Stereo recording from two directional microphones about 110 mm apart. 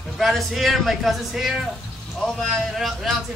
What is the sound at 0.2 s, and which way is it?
A man's voice, centre (ahead or behind).